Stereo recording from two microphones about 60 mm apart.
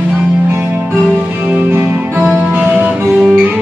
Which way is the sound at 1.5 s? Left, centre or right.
Right.